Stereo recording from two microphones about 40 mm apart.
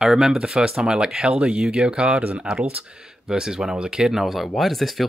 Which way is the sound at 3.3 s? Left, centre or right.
Centre.